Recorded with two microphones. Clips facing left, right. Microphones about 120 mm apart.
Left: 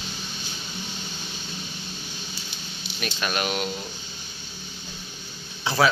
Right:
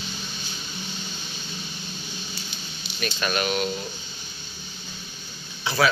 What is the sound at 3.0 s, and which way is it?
Speech, 10° left (ahead or behind).